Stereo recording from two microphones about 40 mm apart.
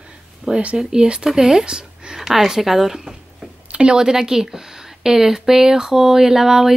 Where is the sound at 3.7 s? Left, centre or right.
Right.